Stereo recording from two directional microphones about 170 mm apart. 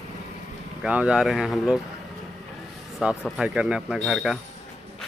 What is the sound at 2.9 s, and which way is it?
Speech, centre (ahead or behind).